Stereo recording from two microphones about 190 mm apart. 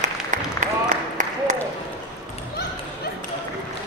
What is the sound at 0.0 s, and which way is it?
Applause, 40° right (ahead or behind).